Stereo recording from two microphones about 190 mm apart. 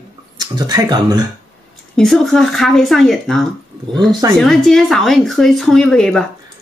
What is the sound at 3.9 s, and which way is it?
Speech, 20° right (ahead or behind).